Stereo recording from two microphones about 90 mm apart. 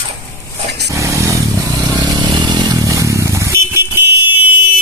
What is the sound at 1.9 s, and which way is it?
Vehicle, 55° right (ahead or behind).